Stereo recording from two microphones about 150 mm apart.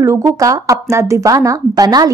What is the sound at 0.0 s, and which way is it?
Speech, 20° right (ahead or behind).